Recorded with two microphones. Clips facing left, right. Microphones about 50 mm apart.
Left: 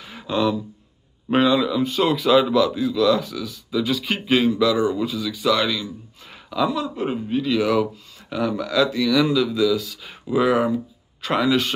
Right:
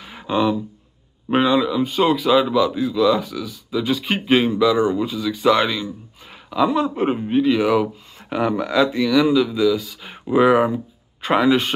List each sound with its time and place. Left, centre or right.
0.0 s a sound: centre
1.3 s a man's voice: centre
5.3 s speech: right
8.3 s speech: right
9.1 s a man's voice: centre